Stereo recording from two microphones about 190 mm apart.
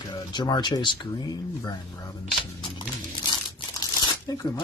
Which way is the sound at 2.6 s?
20° left (ahead or behind).